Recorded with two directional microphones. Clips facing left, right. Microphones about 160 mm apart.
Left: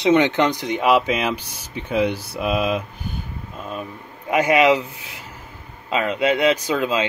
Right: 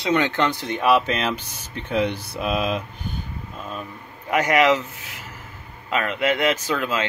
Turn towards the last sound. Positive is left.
turn(degrees=15)  # may be behind; listen again after turning